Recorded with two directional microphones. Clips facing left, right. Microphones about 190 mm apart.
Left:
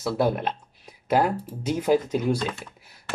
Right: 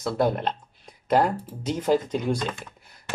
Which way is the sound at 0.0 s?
5° left (ahead or behind).